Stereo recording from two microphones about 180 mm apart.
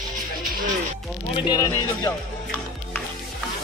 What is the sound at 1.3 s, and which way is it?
Speech, 25° left (ahead or behind).